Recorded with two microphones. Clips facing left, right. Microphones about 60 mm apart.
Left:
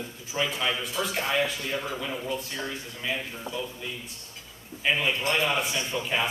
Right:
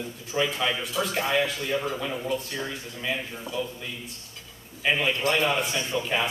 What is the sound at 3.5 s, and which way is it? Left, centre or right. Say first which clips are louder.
Speech: right 3 dB; left.